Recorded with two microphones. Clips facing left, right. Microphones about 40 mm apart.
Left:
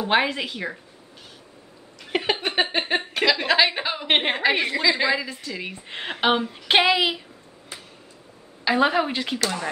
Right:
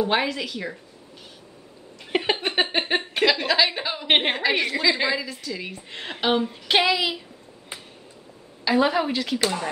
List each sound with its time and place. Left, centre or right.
0.0 s a woman's voice: centre
2.1 s a sound: centre
3.3 s a woman's voice: centre
4.1 s a woman's voice: centre
4.4 s a woman's voice: centre
5.2 s a woman's voice: centre
8.6 s a woman's voice: centre